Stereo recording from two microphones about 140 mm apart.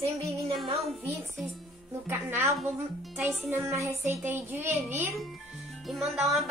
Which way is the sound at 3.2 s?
15° right (ahead or behind).